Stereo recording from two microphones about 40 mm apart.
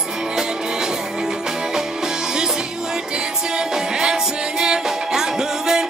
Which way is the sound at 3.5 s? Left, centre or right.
Centre.